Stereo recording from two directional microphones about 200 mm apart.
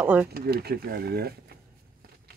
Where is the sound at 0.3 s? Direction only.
50° right (ahead or behind).